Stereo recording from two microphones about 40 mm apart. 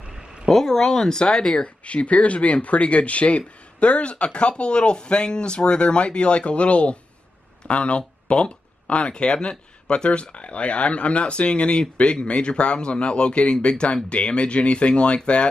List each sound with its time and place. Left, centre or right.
0.5 s speech: centre
1.9 s speech: left